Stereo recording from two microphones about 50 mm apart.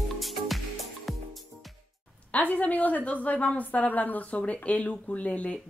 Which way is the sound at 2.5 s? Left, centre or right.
Left.